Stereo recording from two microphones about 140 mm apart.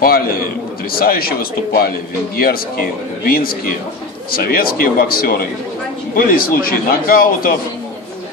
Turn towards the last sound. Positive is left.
turn(degrees=90)